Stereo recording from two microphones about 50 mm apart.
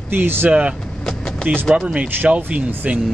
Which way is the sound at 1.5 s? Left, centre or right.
Right.